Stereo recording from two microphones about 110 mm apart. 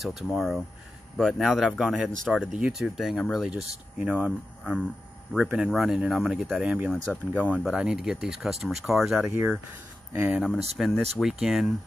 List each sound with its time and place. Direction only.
0.0 s speech: 5° right (ahead or behind)